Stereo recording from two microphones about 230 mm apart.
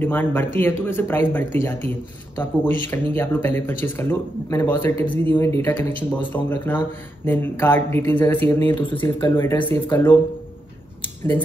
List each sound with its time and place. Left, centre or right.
0.0 s speech: centre
8.9 s speech: left
9.4 s speech: centre